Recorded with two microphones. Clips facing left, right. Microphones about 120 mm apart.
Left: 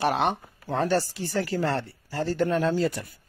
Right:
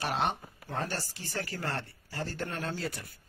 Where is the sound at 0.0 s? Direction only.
60° left (ahead or behind).